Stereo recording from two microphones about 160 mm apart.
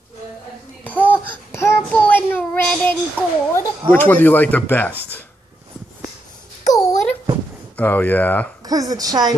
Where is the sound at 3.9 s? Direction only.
10° left (ahead or behind).